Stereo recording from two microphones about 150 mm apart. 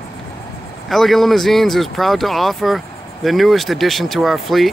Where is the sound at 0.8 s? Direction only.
Centre (ahead or behind).